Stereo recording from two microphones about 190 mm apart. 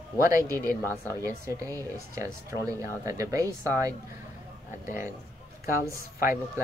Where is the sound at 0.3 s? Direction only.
15° right (ahead or behind).